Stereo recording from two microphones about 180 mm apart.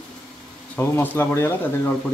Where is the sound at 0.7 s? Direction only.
10° left (ahead or behind).